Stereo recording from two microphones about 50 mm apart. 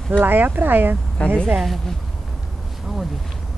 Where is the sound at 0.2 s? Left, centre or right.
Right.